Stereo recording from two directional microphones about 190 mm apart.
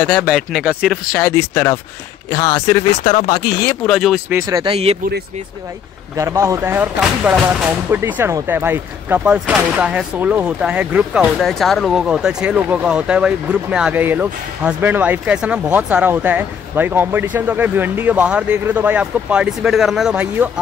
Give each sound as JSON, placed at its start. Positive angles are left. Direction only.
{"t": 0.0, "sound": "speech", "side_deg": 5}
{"t": 3.8, "sound": "speech", "side_deg": 0}
{"t": 4.3, "sound": "speech", "side_deg": -15}
{"t": 6.1, "sound": "speech", "side_deg": -15}